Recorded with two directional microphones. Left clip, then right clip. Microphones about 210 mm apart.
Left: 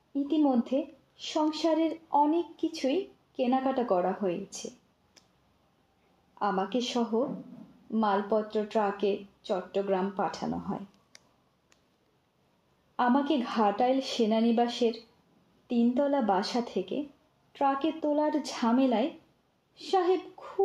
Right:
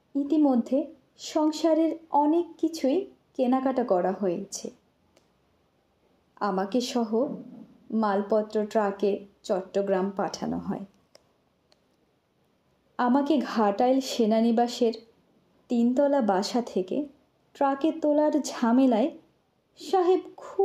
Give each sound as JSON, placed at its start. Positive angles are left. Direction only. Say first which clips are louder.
{"t": 0.1, "sound": "a woman's voice", "louder": "right 3 dB", "side_deg": -15}
{"t": 6.3, "sound": "a woman's voice", "louder": "right 2 dB", "side_deg": -20}
{"t": 12.9, "sound": "a woman's voice", "louder": "right 2 dB", "side_deg": -15}